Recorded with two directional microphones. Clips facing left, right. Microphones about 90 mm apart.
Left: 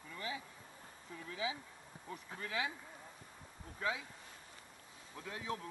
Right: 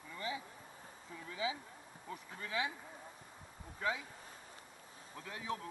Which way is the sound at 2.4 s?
25° right (ahead or behind).